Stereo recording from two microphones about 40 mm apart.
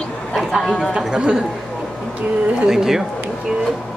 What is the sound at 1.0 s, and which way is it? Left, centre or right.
Speech, right.